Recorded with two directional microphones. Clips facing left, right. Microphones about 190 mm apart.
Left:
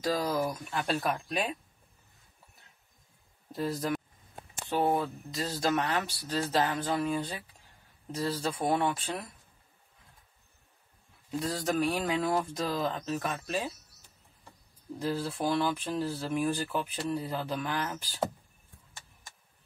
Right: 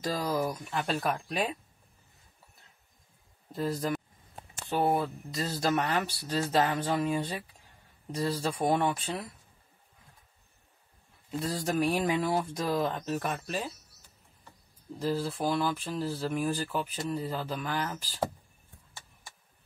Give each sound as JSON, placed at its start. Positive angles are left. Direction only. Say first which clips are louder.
{"t": 0.2, "sound": "speech", "louder": "even", "side_deg": 0}
{"t": 3.5, "sound": "speech", "louder": "right 1 dB", "side_deg": 5}
{"t": 11.4, "sound": "speech", "louder": "right 1 dB", "side_deg": -10}
{"t": 15.0, "sound": "speech", "louder": "right 1 dB", "side_deg": -5}